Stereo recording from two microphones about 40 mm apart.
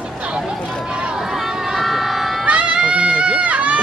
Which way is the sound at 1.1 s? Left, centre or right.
Centre.